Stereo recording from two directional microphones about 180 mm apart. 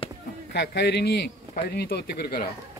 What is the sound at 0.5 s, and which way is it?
A man's voice, 65° left (ahead or behind).